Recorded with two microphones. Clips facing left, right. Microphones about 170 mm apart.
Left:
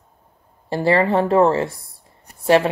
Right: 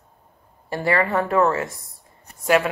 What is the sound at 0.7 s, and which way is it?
A woman's voice, 25° left (ahead or behind).